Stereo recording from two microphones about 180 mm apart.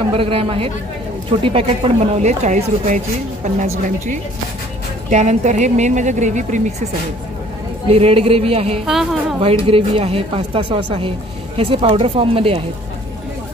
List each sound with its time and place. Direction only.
0.1 s a woman's voice: 30° right (ahead or behind)
7.9 s a woman's voice: 35° right (ahead or behind)
8.8 s a woman's voice: centre (ahead or behind)
9.7 s a woman's voice: 30° right (ahead or behind)